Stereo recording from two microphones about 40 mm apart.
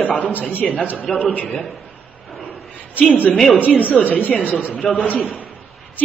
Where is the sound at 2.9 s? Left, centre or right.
Left.